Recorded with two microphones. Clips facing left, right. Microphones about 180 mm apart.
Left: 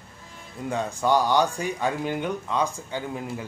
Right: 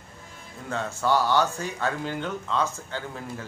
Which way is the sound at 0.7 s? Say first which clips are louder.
Left 2 dB; 15° left (ahead or behind).